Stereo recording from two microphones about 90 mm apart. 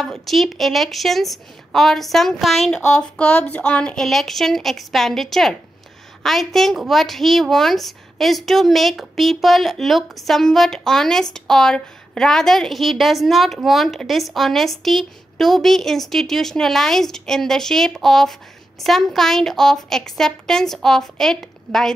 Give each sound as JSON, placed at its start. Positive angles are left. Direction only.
{"t": 0.0, "sound": "a woman's voice", "side_deg": 0}